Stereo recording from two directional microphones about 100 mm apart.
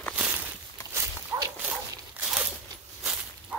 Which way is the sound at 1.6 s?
10° right (ahead or behind).